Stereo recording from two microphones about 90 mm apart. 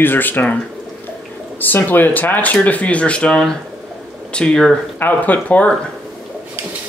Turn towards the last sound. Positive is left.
turn(degrees=15)  # may be behind; listen again after turning